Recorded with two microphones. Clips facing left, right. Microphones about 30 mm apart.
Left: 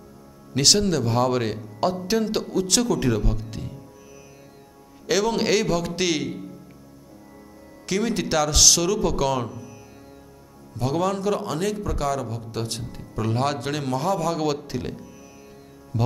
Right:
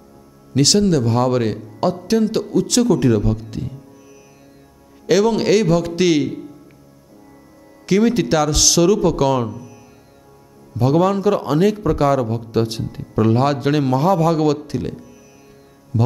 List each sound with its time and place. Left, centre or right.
0.6 s speech: centre
5.0 s speech: centre
7.8 s a man's voice: centre
10.8 s a man's voice: centre
14.7 s speech: centre